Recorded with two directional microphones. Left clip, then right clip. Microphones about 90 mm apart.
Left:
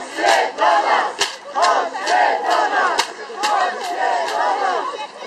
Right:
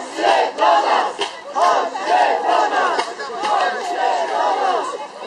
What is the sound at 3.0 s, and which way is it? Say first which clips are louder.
Crowd: left 1 dB; 45° left (ahead or behind).